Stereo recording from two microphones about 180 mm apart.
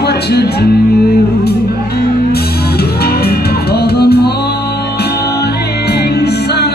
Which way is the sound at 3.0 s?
60° left (ahead or behind).